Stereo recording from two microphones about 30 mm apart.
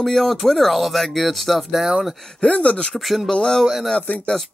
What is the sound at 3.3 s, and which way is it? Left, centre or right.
Speech, left.